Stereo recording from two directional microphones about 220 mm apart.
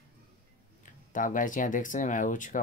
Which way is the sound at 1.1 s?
35° left (ahead or behind).